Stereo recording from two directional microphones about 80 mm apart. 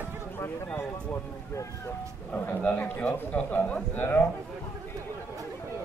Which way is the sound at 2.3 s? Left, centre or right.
Left.